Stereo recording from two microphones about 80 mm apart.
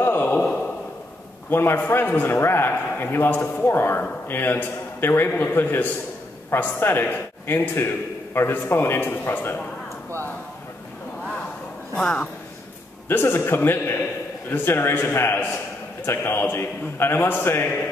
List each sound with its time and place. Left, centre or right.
0.0 s a sound: left
1.5 s a man's voice: left
11.9 s speech: centre
13.1 s a man's voice: left